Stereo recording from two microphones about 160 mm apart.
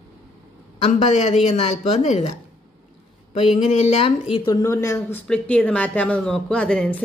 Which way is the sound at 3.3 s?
45° left (ahead or behind).